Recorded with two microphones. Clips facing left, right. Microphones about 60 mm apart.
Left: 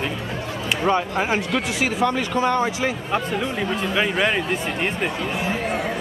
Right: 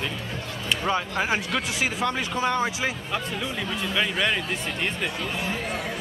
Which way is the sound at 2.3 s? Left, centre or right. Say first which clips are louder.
Left 4 dB; left.